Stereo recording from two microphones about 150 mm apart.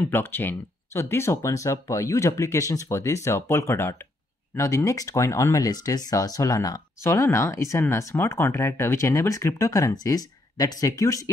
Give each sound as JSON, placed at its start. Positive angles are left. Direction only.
{"t": 0.0, "sound": "speech", "side_deg": 15}